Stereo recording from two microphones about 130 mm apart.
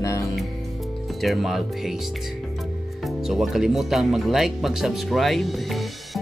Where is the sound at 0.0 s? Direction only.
25° left (ahead or behind).